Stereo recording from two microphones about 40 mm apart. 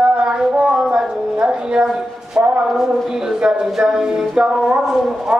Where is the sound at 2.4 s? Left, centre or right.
Right.